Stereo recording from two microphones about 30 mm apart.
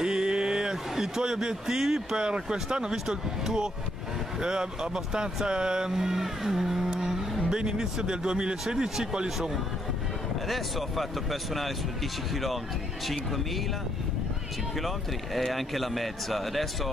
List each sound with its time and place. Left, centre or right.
0.0 s a sound: right
2.1 s speech: right
6.2 s vehicle: centre
7.4 s speech: right
8.7 s vehicle: centre
10.5 s speech: centre
14.8 s speech: centre